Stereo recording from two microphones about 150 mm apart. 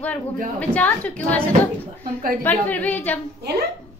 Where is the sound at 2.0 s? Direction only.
70° right (ahead or behind).